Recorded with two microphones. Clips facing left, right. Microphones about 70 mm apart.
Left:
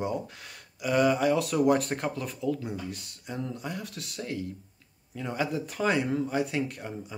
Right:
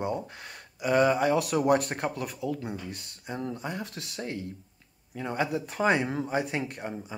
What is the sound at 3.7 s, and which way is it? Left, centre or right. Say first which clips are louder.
Speech: right 1 dB; right.